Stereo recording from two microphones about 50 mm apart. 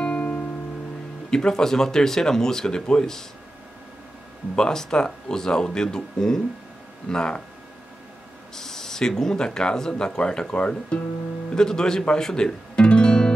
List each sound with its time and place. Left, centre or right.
0.0 s music: left
1.3 s speech: centre
4.6 s speech: centre
8.5 s speech: centre